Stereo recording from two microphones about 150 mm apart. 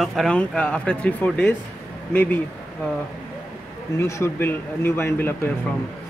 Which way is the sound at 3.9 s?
20° left (ahead or behind).